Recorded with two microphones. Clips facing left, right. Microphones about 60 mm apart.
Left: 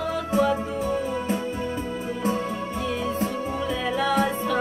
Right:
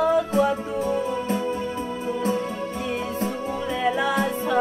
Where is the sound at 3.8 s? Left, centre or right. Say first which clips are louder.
Right 4 dB; centre.